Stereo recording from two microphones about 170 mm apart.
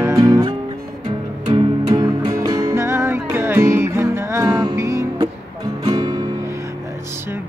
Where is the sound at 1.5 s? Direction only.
30° right (ahead or behind).